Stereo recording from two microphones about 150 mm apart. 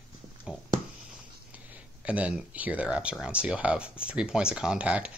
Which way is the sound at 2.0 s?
10° right (ahead or behind).